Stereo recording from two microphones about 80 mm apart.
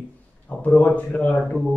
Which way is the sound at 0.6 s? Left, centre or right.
Centre.